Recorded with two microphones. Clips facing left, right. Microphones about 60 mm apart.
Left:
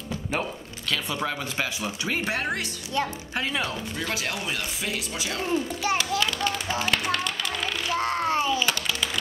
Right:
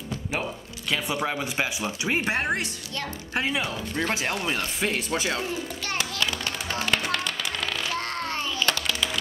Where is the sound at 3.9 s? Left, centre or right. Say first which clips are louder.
Right 3 dB; right.